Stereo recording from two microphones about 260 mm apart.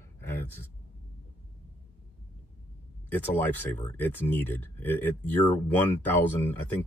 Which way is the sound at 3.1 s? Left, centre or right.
Centre.